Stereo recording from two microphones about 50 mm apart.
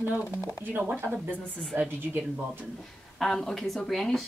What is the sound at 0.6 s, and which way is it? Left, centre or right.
Speech, right.